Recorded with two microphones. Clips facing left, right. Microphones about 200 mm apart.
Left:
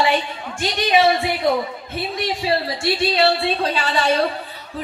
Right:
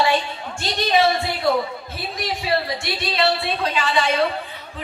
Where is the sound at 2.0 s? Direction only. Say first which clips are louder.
Left 5 dB; 25° left (ahead or behind).